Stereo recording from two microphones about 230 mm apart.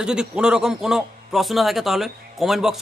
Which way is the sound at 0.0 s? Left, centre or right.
Centre.